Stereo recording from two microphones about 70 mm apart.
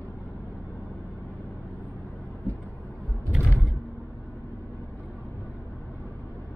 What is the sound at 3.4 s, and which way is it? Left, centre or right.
Mechanisms, left.